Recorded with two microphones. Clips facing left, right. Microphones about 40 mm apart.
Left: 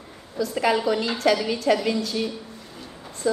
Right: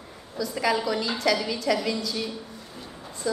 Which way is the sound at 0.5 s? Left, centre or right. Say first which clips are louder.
Left 3 dB; left.